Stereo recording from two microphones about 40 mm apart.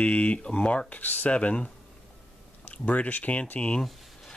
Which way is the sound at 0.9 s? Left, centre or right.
Left.